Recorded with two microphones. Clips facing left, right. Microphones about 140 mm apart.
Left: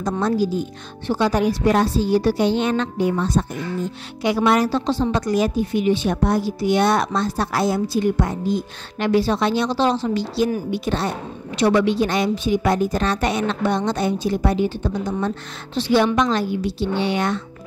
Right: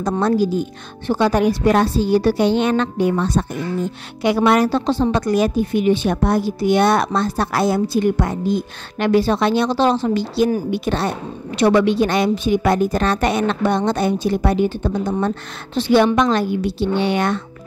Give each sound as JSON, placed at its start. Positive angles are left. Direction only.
{"t": 0.2, "sound": "a woman's voice", "side_deg": -60}